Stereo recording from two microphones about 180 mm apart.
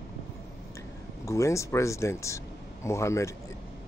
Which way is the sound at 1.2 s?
15° left (ahead or behind).